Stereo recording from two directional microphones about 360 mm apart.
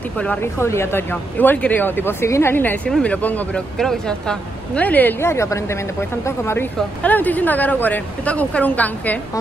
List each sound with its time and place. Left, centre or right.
0.2 s speech: centre